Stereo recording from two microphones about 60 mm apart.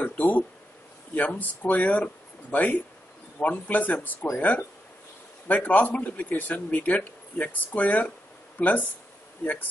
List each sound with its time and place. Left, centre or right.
0.0 s speech: left